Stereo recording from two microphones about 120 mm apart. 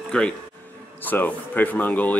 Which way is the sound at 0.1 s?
10° left (ahead or behind).